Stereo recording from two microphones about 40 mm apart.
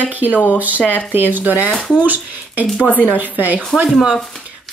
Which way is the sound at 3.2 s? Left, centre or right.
Right.